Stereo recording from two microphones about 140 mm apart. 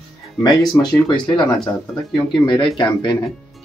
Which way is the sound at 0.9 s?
30° left (ahead or behind).